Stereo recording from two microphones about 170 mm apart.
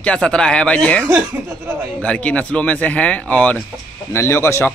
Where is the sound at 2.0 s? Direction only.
10° left (ahead or behind).